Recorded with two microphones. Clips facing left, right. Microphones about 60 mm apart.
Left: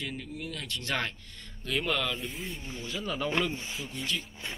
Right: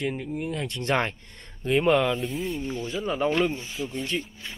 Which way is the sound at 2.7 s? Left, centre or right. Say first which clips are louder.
Right 7 dB; right.